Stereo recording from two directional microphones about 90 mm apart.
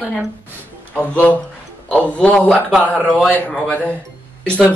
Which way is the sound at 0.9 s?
15° left (ahead or behind).